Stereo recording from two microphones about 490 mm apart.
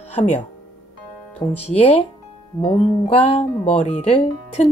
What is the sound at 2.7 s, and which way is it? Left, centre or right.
Speech, centre.